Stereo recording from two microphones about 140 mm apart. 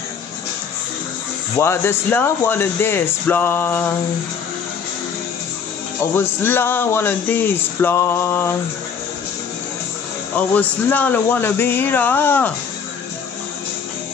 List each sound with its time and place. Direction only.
1.6 s speech: 15° left (ahead or behind)
6.1 s speech: 15° left (ahead or behind)
10.3 s speech: 10° left (ahead or behind)